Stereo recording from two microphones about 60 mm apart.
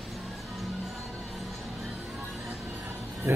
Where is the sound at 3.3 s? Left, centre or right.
Right.